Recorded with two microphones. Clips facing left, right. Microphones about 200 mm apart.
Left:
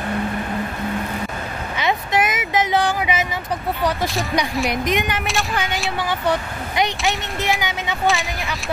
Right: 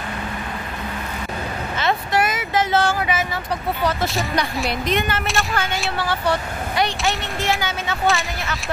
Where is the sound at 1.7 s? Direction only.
15° left (ahead or behind).